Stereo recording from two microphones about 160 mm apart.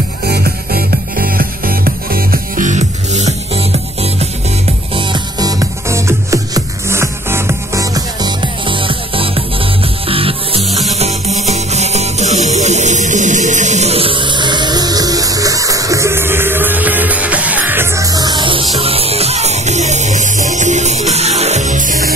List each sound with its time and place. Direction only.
0.3 s music: 75° right (ahead or behind); by 4.3 s 40° right (ahead or behind)
4.9 s music: 30° right (ahead or behind); by 22.1 s 55° right (ahead or behind)